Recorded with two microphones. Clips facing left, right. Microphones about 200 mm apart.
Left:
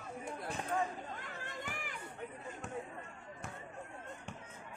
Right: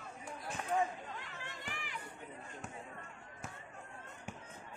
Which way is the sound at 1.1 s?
45° left (ahead or behind).